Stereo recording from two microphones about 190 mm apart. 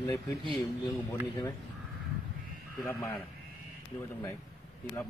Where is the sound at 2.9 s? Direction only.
15° left (ahead or behind).